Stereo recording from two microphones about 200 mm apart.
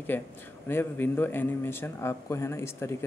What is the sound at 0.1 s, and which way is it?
Speech, 10° left (ahead or behind).